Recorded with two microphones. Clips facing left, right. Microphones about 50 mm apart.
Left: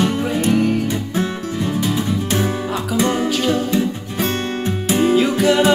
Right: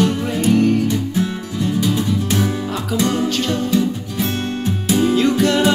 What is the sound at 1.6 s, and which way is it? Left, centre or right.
Music, left.